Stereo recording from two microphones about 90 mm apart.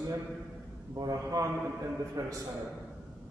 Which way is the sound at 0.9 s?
40° right (ahead or behind).